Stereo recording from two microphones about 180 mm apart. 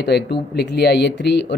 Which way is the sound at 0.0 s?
65° left (ahead or behind).